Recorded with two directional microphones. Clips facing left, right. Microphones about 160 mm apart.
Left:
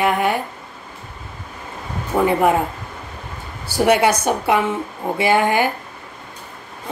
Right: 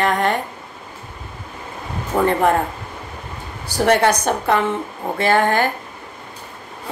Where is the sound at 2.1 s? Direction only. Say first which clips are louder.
Even; 10° left (ahead or behind).